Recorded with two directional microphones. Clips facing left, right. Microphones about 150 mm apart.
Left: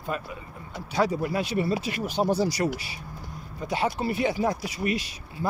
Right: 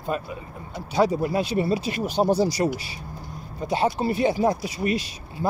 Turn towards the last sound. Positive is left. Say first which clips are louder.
# right 3 dB
turn(degrees=-30)  # may be behind; listen again after turning